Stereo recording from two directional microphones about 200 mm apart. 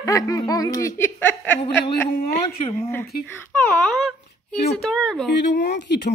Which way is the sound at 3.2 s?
10° left (ahead or behind).